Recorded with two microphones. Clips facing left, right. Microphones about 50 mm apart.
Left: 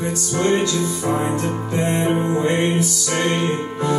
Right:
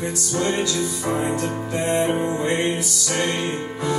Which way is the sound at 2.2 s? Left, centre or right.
Left.